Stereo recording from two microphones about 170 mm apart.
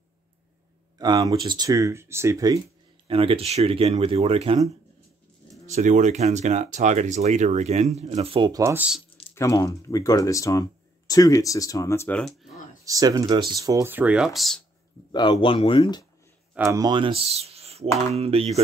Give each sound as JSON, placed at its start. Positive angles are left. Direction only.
{"t": 0.9, "sound": "speech", "side_deg": -25}
{"t": 3.1, "sound": "speech", "side_deg": -35}
{"t": 8.5, "sound": "speech", "side_deg": -15}
{"t": 9.3, "sound": "speech", "side_deg": 20}
{"t": 12.8, "sound": "speech", "side_deg": -20}
{"t": 15.0, "sound": "speech", "side_deg": 25}
{"t": 16.5, "sound": "speech", "side_deg": -15}